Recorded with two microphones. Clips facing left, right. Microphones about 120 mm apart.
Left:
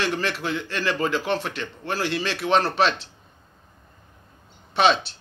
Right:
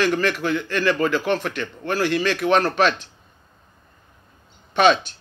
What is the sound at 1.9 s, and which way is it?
Speech, 45° right (ahead or behind).